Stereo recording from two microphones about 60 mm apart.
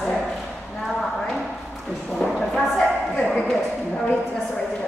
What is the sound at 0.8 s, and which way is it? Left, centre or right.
Clip-clop, centre.